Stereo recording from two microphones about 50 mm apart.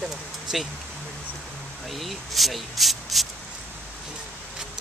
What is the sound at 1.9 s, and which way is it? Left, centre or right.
Speech, centre.